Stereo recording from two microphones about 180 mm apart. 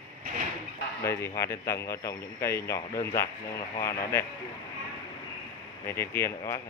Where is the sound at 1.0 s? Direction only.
15° left (ahead or behind).